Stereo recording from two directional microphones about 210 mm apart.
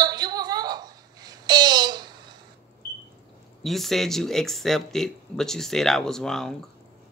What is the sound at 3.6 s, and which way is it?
Speech, centre (ahead or behind).